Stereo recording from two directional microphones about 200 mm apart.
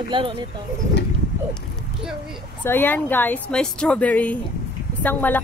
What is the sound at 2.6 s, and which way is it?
A woman's voice, 10° left (ahead or behind).